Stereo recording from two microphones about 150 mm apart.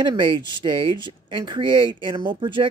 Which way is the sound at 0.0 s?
30° right (ahead or behind).